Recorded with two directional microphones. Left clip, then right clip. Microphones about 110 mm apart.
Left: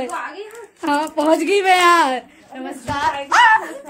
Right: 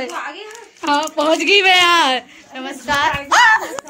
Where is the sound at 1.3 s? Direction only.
20° left (ahead or behind).